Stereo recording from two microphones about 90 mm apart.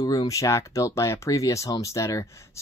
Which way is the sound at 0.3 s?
35° left (ahead or behind).